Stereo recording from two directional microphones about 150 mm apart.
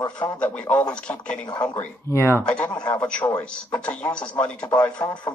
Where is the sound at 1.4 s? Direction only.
30° left (ahead or behind).